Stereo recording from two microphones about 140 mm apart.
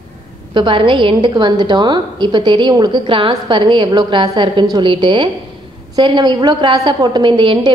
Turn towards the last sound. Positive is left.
turn(degrees=-35)  # may be behind; listen again after turning